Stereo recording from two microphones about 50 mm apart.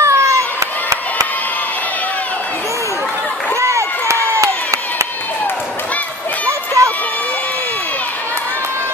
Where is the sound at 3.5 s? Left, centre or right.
Right.